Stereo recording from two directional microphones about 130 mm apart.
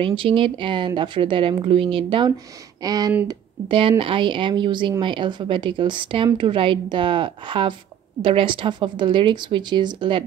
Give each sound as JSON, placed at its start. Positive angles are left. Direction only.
{"t": 0.0, "sound": "speech", "side_deg": -40}
{"t": 2.8, "sound": "speech", "side_deg": -30}
{"t": 3.3, "sound": "speech", "side_deg": -45}